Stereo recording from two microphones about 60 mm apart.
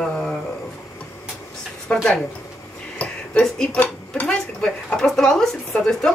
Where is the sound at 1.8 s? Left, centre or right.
Centre.